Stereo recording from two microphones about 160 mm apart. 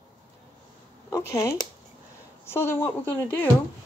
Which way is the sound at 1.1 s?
20° left (ahead or behind).